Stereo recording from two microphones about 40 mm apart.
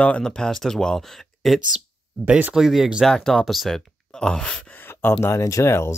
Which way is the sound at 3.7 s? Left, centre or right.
Centre.